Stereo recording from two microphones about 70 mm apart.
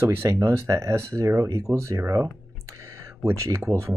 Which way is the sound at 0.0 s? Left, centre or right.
Right.